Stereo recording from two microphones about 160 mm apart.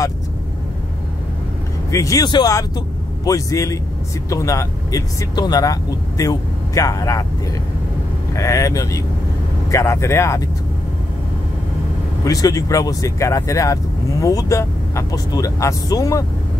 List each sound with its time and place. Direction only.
1.9 s speech: 20° left (ahead or behind)
8.4 s speech: 20° left (ahead or behind)
12.3 s speech: 20° left (ahead or behind)